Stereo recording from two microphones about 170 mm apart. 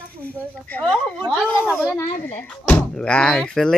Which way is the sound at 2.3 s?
10° left (ahead or behind).